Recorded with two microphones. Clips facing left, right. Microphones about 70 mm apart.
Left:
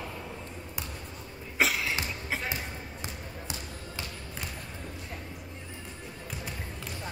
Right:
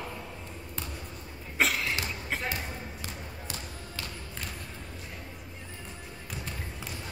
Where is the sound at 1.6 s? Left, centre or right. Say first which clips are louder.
Even; centre.